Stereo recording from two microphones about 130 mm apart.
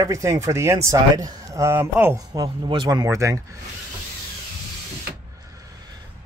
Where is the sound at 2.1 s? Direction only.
30° right (ahead or behind).